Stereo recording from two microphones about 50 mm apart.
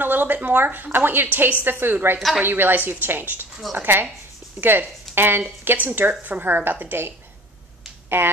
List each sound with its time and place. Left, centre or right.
0.0 s a woman's voice: right
8.2 s a woman's voice: right